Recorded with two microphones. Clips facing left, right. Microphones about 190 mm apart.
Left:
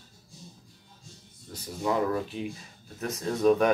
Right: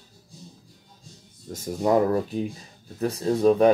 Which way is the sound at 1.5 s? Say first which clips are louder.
Right 7 dB; 45° right (ahead or behind).